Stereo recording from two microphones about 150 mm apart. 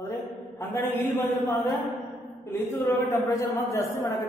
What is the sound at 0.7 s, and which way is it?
Speech, 15° left (ahead or behind).